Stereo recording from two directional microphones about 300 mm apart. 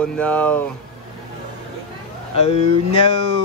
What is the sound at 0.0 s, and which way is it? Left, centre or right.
Speech, centre.